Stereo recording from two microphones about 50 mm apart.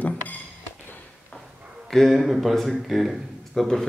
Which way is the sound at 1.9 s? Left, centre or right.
Centre.